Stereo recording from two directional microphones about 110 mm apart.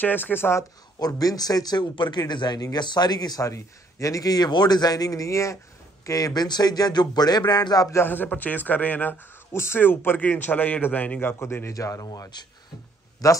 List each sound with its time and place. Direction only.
0.0 s speech: 15° left (ahead or behind)
0.9 s speech: 35° left (ahead or behind)
8.0 s speech: 15° left (ahead or behind)